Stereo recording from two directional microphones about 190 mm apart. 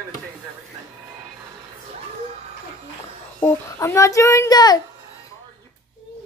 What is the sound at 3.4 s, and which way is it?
A child's voice, 10° left (ahead or behind).